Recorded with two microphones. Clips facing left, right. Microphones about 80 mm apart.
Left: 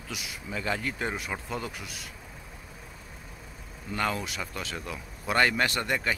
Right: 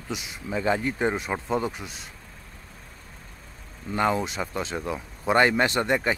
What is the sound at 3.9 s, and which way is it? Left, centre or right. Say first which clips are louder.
Speech: right 6 dB; right.